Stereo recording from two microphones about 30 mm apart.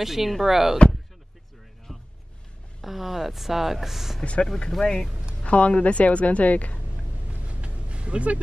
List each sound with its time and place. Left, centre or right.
0.0 s speech: centre
1.9 s music: centre
2.8 s speech: centre
4.2 s speech: left
4.5 s speech: centre
5.4 s a woman's voice: left
7.4 s vehicle: right